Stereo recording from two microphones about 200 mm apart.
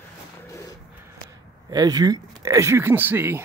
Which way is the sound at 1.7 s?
20° right (ahead or behind).